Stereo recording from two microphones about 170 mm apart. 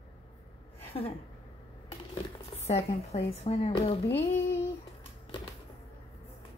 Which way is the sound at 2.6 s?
40° left (ahead or behind).